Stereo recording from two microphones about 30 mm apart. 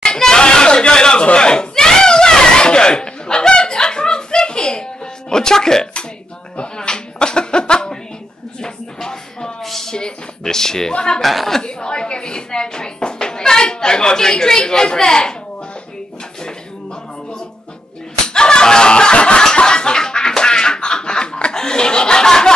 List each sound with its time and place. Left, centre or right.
0.0 s music: left
1.2 s a sound: left
5.3 s music: left
6.6 s slap: left
8.5 s music: left
9.6 s a sound: centre
9.8 s speech: left
10.9 s a woman's voice: left
11.1 s speech: centre
11.6 s a sound: left
14.4 s a woman's voice: left
18.2 s a sound: left
21.5 s chuckle: left